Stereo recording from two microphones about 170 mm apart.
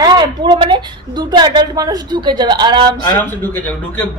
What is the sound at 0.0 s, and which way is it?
A woman's voice, 30° right (ahead or behind).